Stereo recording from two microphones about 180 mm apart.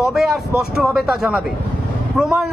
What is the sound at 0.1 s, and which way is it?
Vehicle, centre (ahead or behind).